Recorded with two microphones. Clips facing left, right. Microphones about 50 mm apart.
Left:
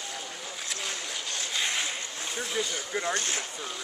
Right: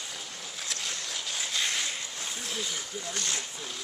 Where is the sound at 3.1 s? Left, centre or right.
Left.